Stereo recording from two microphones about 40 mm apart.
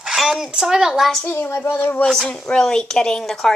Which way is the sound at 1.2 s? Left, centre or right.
Left.